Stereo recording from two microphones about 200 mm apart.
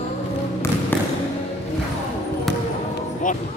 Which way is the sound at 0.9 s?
10° left (ahead or behind).